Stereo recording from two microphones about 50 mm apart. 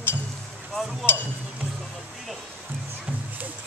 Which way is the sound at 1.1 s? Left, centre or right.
Left.